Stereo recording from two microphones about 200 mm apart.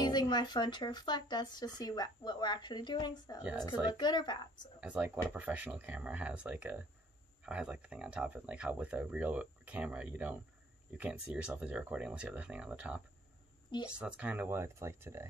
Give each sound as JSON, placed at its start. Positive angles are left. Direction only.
{"t": 0.0, "sound": "speech", "side_deg": 20}
{"t": 4.7, "sound": "speech", "side_deg": -5}